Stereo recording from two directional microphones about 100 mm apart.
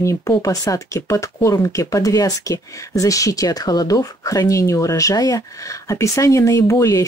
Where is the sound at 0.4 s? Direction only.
35° left (ahead or behind).